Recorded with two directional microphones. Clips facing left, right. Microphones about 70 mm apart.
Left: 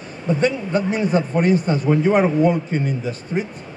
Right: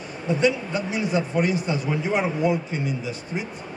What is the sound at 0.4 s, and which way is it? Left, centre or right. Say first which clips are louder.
Speech: left 3 dB; left.